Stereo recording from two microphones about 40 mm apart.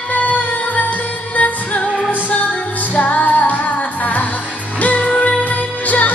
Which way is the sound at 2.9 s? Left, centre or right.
Left.